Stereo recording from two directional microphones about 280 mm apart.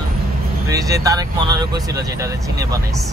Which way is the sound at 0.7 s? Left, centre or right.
Centre.